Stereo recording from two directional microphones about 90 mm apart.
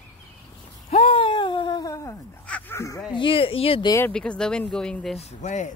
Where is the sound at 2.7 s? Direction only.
30° left (ahead or behind).